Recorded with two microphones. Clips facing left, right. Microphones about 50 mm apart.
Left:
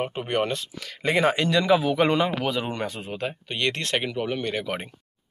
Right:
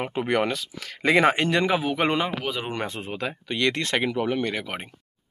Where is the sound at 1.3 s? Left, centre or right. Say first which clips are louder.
Left 2 dB; right.